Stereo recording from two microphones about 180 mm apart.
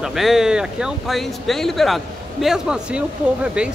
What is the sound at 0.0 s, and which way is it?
Speech, centre (ahead or behind).